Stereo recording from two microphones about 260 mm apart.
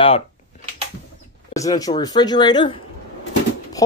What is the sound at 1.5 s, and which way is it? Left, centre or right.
Speech, centre.